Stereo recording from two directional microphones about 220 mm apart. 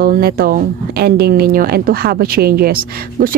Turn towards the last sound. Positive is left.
turn(degrees=-45)  # may be behind; listen again after turning